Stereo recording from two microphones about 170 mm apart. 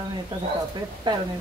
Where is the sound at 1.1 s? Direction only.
25° right (ahead or behind).